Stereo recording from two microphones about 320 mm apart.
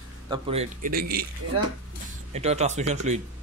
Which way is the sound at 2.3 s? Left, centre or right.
Right.